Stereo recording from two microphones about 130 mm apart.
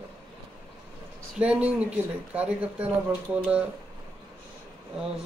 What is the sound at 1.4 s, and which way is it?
Speech, 10° right (ahead or behind).